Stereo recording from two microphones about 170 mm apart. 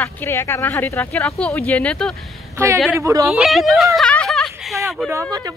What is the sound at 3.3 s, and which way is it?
Speech, centre (ahead or behind).